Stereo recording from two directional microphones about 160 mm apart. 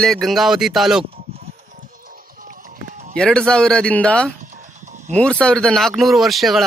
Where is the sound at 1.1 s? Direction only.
40° right (ahead or behind).